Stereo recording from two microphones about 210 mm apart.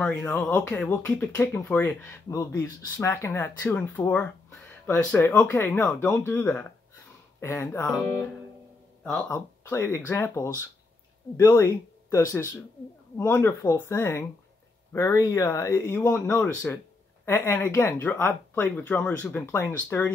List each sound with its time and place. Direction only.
0.0 s speech: 5° left (ahead or behind)